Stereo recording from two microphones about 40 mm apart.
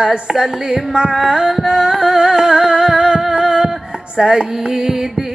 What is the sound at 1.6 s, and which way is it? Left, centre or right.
Music, right.